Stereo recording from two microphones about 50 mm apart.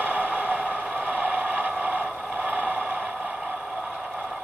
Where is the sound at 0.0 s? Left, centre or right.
Right.